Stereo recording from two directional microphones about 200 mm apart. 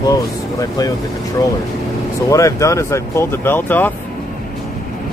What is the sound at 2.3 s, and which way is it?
Speech, 15° left (ahead or behind).